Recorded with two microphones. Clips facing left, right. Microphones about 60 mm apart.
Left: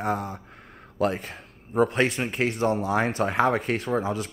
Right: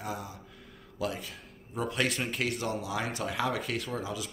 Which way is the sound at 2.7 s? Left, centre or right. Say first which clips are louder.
Left 9 dB; left.